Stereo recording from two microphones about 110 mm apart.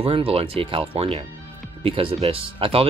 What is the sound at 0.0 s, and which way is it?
Speech, 60° right (ahead or behind).